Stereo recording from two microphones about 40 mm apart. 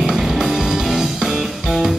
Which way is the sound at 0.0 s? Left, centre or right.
Centre.